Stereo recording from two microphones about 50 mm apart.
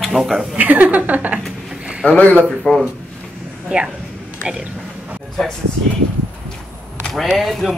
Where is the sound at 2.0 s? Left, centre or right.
Left.